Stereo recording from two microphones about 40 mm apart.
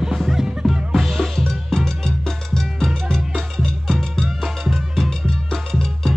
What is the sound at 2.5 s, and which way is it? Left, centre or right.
Salsa music, centre.